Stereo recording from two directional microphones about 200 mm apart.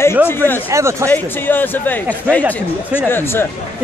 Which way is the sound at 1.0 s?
10° left (ahead or behind).